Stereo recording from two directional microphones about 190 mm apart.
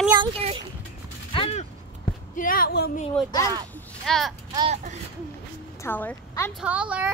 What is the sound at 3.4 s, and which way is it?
Speech, 20° right (ahead or behind).